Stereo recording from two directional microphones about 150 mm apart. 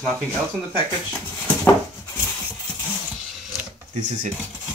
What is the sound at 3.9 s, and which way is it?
Speech, 55° right (ahead or behind).